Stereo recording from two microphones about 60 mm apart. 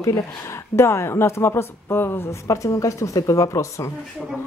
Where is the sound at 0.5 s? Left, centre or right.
Left.